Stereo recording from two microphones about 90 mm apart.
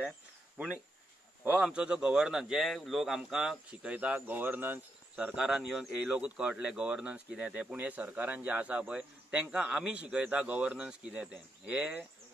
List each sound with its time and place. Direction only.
1.6 s speech: 10° right (ahead or behind)
5.2 s speech: 10° right (ahead or behind)